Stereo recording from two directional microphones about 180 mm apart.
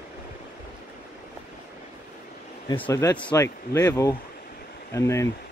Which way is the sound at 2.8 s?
15° left (ahead or behind).